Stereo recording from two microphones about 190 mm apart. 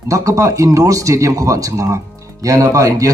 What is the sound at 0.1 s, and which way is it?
Speech, 15° right (ahead or behind).